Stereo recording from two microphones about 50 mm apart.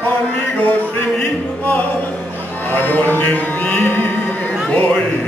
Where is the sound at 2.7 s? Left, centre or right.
Left.